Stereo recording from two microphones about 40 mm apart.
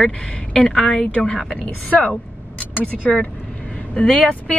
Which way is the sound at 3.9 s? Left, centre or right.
Left.